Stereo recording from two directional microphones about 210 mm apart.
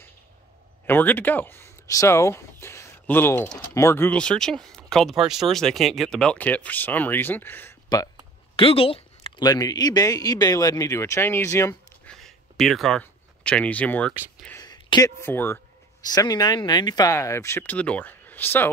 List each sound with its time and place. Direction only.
0.8 s speech: 10° left (ahead or behind)
8.5 s speech: 25° left (ahead or behind)
12.2 s a sound: centre (ahead or behind)
14.6 s speech: 20° left (ahead or behind)